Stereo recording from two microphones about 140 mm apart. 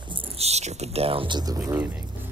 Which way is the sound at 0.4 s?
50° right (ahead or behind).